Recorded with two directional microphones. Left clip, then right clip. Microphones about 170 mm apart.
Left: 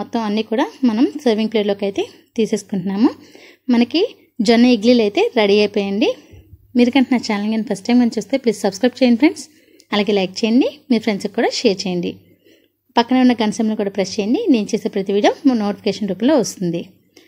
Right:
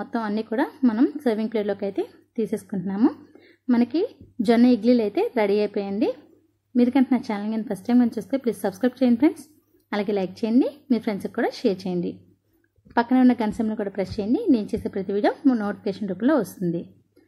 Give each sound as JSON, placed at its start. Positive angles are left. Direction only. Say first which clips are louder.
{"t": 0.0, "sound": "a woman's voice", "louder": "left 6 dB", "side_deg": 20}
{"t": 2.5, "sound": "a woman's voice", "louder": "left 7 dB", "side_deg": 40}
{"t": 2.9, "sound": "a woman's voice", "louder": "left 5 dB", "side_deg": 20}